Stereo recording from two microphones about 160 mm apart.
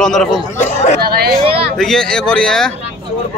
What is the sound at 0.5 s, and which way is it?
Speech, 45° left (ahead or behind).